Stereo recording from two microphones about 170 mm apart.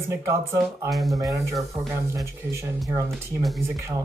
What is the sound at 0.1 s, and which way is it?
Speech, 15° right (ahead or behind).